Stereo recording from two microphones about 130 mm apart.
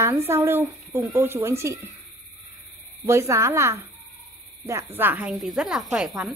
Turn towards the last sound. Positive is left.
turn(degrees=-5)  # may be behind; listen again after turning